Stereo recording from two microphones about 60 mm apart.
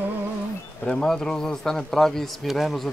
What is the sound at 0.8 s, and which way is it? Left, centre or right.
Speech, centre.